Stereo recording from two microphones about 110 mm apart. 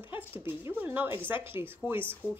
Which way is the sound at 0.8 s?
15° right (ahead or behind).